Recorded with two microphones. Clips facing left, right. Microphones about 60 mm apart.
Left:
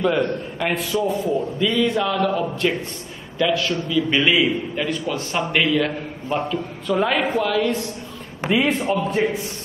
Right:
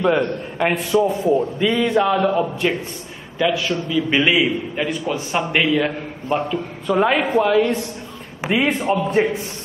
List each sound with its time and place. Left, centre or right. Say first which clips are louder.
0.0 s a man's voice: right 2 dB; right
1.6 s a man's voice: right 2 dB; right
8.4 s a sound: even; centre
8.6 s a man's voice: right 1 dB; right